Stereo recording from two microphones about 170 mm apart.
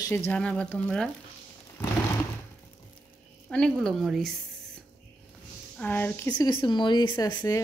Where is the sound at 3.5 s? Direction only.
5° left (ahead or behind).